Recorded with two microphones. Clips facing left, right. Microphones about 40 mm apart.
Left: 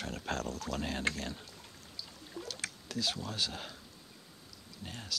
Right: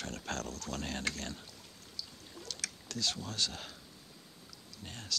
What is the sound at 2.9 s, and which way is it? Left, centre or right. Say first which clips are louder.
Speech: left 1 dB; centre.